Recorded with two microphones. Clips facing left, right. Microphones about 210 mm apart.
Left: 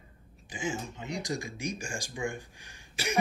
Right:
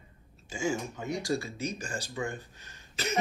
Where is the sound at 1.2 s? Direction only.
15° left (ahead or behind).